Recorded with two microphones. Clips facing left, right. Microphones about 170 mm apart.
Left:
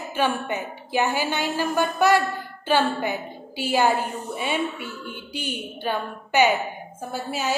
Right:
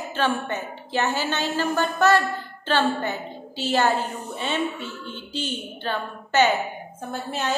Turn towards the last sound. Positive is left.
turn(degrees=5)  # may be behind; listen again after turning